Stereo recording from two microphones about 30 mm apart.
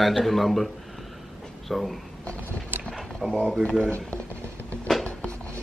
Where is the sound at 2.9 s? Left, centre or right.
Centre.